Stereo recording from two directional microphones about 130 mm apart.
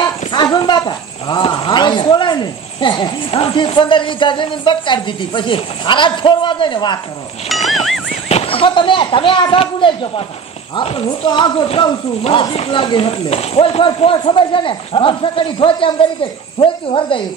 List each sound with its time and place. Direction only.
0.3 s speech: 35° left (ahead or behind)
7.4 s speech: centre (ahead or behind)
8.1 s speech: 55° left (ahead or behind)